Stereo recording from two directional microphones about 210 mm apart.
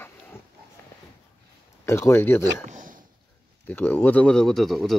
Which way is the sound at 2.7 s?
40° right (ahead or behind).